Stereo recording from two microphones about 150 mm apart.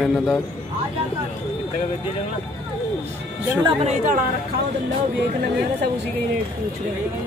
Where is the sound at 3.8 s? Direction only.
60° right (ahead or behind).